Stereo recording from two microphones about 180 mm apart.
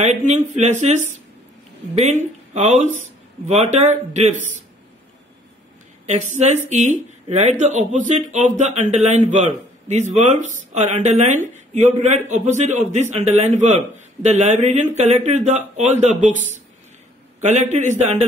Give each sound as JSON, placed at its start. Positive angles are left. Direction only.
{"t": 0.0, "sound": "speech", "side_deg": -40}
{"t": 6.0, "sound": "speech", "side_deg": -40}